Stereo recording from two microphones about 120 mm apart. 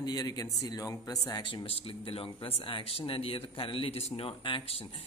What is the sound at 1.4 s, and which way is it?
Speech, 45° left (ahead or behind).